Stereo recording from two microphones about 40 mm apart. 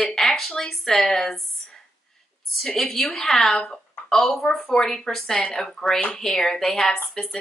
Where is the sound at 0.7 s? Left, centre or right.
Centre.